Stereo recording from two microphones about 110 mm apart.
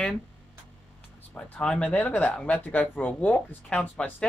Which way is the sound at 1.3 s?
10° left (ahead or behind).